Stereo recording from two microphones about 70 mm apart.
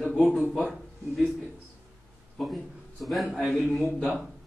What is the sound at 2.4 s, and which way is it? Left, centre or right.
A man's voice, centre.